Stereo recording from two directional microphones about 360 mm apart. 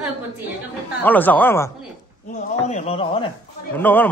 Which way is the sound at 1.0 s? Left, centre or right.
Centre.